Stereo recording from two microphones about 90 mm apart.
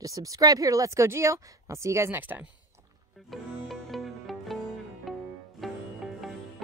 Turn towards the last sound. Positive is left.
turn(degrees=0)  # may be behind; listen again after turning